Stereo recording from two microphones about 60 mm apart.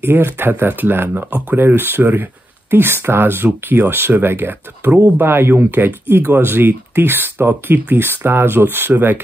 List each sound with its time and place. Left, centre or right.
0.0 s speech: right